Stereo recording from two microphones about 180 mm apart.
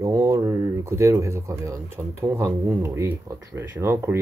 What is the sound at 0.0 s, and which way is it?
Speech, 20° right (ahead or behind).